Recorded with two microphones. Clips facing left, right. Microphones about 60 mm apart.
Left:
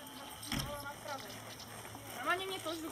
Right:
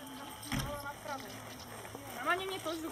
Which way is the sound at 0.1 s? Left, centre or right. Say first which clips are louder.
Right 2 dB; centre.